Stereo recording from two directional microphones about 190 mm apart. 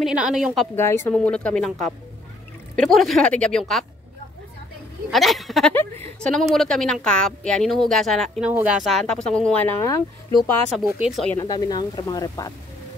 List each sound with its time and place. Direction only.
0.0 s a woman's voice: 5° right (ahead or behind)
0.7 s a woman's voice: 10° left (ahead or behind)
2.9 s a woman's voice: centre (ahead or behind)
5.1 s a woman's voice: centre (ahead or behind); by 10.5 s 15° left (ahead or behind)
10.9 s a woman's voice: 5° right (ahead or behind)
11.3 s speech: 20° left (ahead or behind)